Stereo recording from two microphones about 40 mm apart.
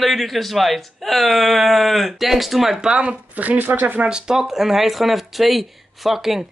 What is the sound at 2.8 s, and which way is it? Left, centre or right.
Speech, right.